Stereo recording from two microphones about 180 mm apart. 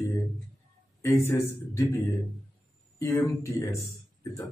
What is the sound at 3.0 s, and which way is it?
Speech, 15° left (ahead or behind).